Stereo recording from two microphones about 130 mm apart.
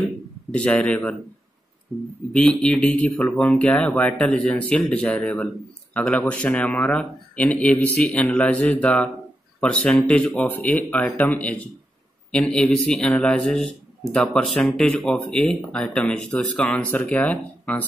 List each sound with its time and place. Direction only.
0.5 s speech: 10° left (ahead or behind)
2.3 s a man's voice: 5° left (ahead or behind)